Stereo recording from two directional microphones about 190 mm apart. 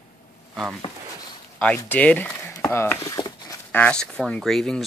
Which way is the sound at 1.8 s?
10° left (ahead or behind).